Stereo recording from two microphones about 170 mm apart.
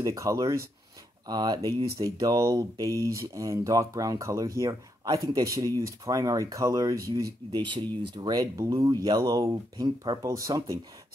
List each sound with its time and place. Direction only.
0.0 s speech: 20° right (ahead or behind)